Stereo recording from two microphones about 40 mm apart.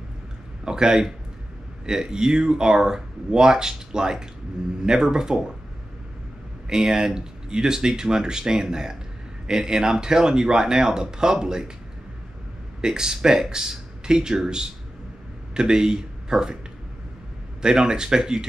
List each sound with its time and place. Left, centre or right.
0.7 s speech: centre
6.7 s speech: centre
12.8 s speech: centre
17.6 s speech: centre